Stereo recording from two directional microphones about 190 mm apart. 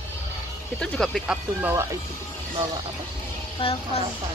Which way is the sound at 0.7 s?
Centre (ahead or behind).